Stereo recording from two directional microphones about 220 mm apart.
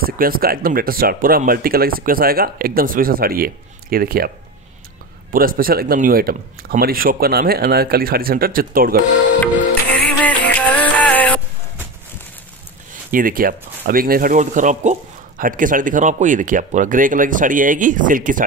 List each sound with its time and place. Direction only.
0.0 s speech: 40° right (ahead or behind)
5.3 s speech: 40° right (ahead or behind)
9.9 s music: 5° left (ahead or behind)
13.1 s speech: 40° right (ahead or behind)